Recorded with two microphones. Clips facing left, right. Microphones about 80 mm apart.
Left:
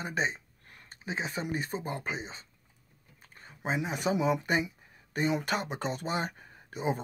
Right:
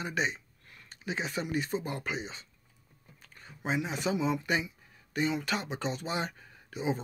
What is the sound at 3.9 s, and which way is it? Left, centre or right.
Speech, left.